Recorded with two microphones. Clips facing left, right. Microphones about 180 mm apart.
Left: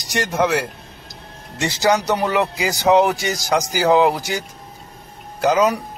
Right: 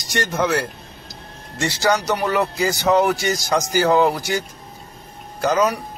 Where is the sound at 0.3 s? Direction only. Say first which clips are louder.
Left 2 dB; 15° left (ahead or behind).